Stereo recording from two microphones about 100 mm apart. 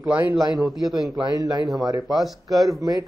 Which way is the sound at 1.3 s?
40° right (ahead or behind).